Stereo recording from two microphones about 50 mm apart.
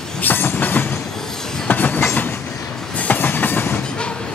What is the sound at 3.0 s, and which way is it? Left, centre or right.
Train, left.